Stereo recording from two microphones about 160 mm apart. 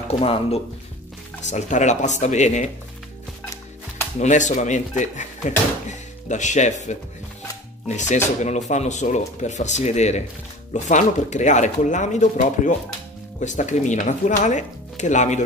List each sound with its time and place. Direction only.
0.1 s speech: 40° left (ahead or behind)
4.2 s speech: 50° left (ahead or behind)
8.4 s speech: 50° left (ahead or behind)